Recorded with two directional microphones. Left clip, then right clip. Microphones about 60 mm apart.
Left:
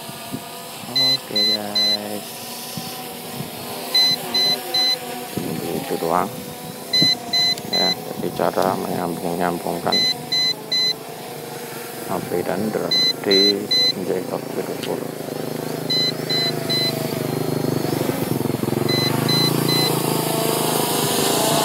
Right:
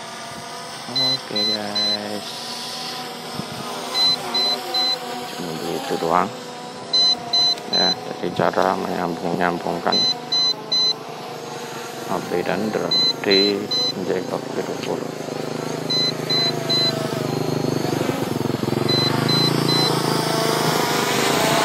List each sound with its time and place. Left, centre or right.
0.9 s speech: left
3.9 s a sound: left
6.9 s alarm clock: left
8.2 s speech: left
9.8 s alarm clock: left
12.8 s speech: left
13.3 s speech: left
13.7 s vehicle: left
14.0 s speech: centre
15.6 s vehicle: left